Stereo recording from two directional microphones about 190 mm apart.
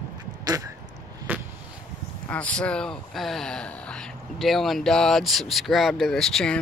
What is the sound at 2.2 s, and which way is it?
Speech, 5° left (ahead or behind).